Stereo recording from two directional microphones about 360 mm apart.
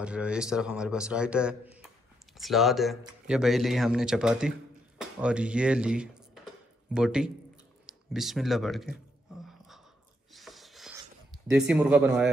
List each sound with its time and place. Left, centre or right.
0.0 s a man's voice: centre
10.3 s a sound: centre
11.5 s a man's voice: centre